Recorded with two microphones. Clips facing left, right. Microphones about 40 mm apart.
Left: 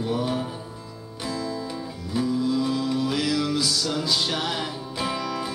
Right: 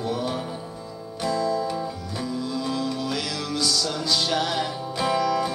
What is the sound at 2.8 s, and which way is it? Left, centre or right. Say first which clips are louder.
Music: left 3 dB; centre.